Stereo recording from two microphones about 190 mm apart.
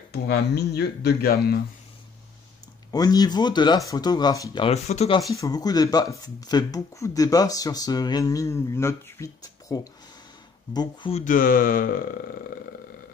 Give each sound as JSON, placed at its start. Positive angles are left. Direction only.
{"t": 0.1, "sound": "speech", "side_deg": 55}
{"t": 2.9, "sound": "speech", "side_deg": 20}
{"t": 4.6, "sound": "speech", "side_deg": 35}
{"t": 5.3, "sound": "speech", "side_deg": 20}
{"t": 11.2, "sound": "speech", "side_deg": 45}